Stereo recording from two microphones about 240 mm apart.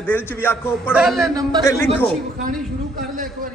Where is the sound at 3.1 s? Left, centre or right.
Right.